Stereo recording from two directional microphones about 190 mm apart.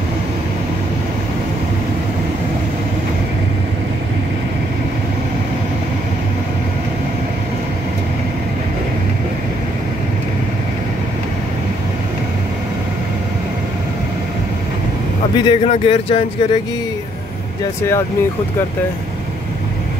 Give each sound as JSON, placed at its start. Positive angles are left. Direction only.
{"t": 15.3, "sound": "a man's voice", "side_deg": 30}